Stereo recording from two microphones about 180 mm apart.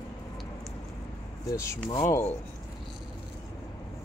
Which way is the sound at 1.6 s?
15° left (ahead or behind).